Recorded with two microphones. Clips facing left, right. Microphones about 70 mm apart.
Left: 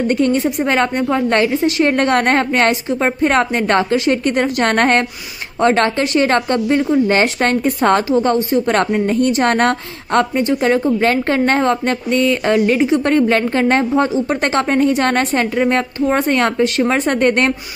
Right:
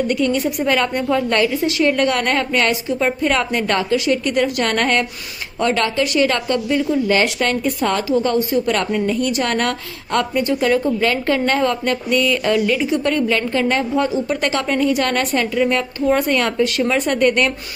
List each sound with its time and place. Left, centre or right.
0.1 s a woman's voice: left
1.9 s a woman's voice: left